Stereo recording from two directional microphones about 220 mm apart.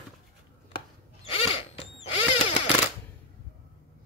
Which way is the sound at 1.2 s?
25° left (ahead or behind).